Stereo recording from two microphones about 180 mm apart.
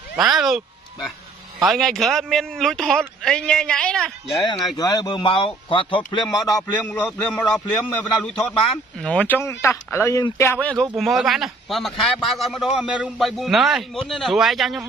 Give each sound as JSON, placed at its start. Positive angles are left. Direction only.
{"t": 0.1, "sound": "a man's voice", "side_deg": -5}
{"t": 1.7, "sound": "a man's voice", "side_deg": 0}
{"t": 4.7, "sound": "speech", "side_deg": 20}
{"t": 6.5, "sound": "a man's voice", "side_deg": 5}